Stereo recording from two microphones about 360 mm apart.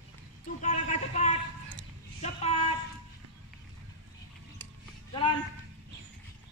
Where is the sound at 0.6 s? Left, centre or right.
Centre.